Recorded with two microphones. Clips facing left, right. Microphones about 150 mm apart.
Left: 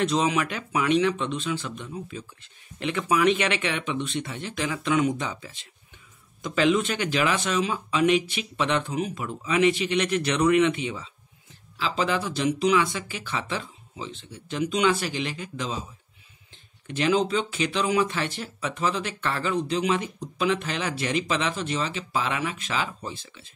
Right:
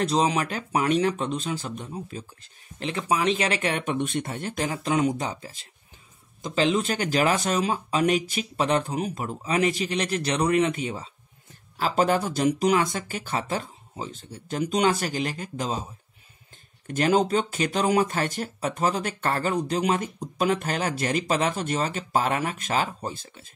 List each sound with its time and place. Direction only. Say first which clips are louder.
0.0 s speech: even; 35° right (ahead or behind)
16.8 s speech: right 1 dB; 45° right (ahead or behind)